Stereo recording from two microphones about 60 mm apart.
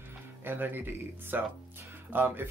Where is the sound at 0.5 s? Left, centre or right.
Right.